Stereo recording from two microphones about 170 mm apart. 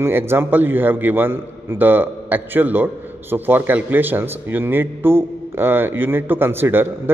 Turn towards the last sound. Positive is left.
turn(degrees=-15)  # may be behind; listen again after turning